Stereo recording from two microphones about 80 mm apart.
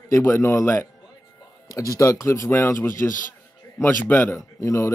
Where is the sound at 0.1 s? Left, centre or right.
Left.